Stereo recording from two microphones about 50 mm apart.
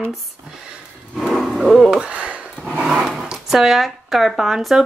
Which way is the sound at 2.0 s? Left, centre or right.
Right.